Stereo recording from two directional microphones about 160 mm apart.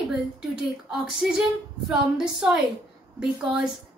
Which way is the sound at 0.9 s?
5° right (ahead or behind).